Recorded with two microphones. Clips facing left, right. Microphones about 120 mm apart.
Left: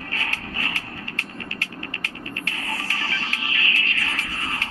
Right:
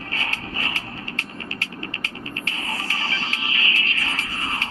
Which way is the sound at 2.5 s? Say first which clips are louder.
Right 1 dB; 25° right (ahead or behind).